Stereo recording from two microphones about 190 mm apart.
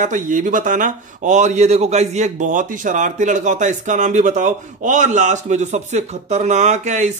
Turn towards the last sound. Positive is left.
turn(degrees=-35)  # may be behind; listen again after turning